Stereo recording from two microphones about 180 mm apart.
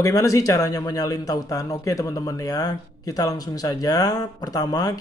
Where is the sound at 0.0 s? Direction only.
20° left (ahead or behind).